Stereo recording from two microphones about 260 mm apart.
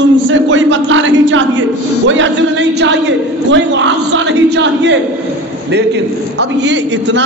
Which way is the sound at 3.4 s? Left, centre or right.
Right.